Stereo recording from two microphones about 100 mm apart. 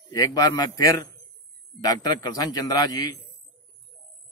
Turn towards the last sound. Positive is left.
turn(degrees=40)  # may be behind; listen again after turning